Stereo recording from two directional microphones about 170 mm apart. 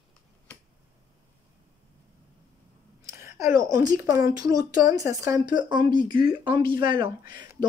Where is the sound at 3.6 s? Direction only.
20° right (ahead or behind).